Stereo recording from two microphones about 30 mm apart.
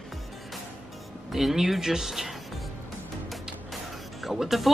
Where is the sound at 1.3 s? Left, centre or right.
Centre.